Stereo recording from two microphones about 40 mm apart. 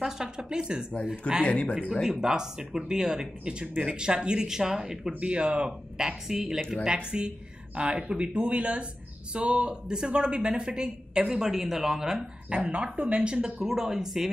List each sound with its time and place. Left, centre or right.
0.0 s a sound: centre
1.4 s speech: left
2.0 s speech: centre
5.2 s speech: right
5.7 s speech: centre
12.4 s speech: right
13.6 s speech: centre